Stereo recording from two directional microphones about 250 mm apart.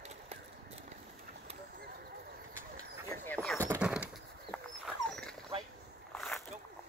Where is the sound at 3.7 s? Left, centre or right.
Centre.